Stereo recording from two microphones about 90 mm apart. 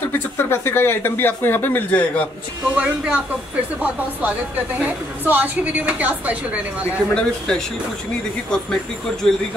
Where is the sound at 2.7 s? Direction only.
15° right (ahead or behind).